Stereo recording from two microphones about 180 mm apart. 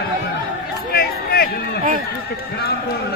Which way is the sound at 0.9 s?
60° left (ahead or behind).